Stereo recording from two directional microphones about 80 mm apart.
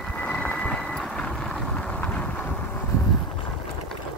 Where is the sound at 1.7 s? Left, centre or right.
Centre.